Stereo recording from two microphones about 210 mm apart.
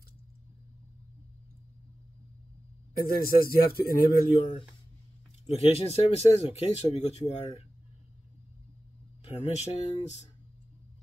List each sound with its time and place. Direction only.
3.0 s a man's voice: 45° left (ahead or behind)
5.5 s speech: 30° left (ahead or behind)
9.2 s speech: 30° left (ahead or behind)